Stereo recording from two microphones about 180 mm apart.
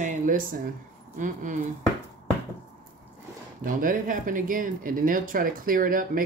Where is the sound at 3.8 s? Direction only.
50° right (ahead or behind).